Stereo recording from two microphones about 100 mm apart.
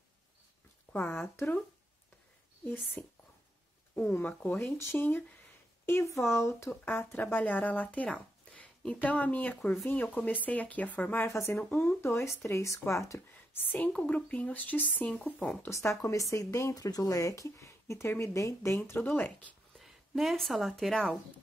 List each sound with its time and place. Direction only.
1.1 s speech: 25° left (ahead or behind)
3.0 s a woman's voice: 15° left (ahead or behind)
15.7 s speech: 30° left (ahead or behind)
19.0 s a woman's voice: 15° left (ahead or behind)
19.8 s speech: centre (ahead or behind)